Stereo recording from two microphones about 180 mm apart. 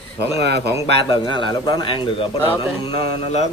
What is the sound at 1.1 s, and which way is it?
A man's voice, 25° left (ahead or behind).